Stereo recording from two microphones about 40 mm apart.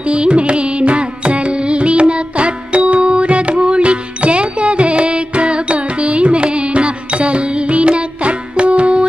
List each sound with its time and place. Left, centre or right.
0.0 s carnatic music: right